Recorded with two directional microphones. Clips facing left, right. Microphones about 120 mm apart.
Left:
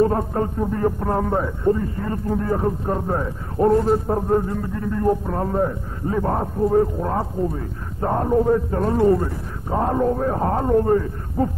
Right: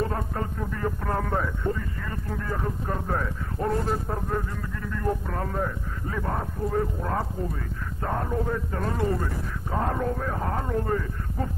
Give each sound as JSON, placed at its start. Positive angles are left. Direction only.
{"t": 0.0, "sound": "a man's voice", "side_deg": 35}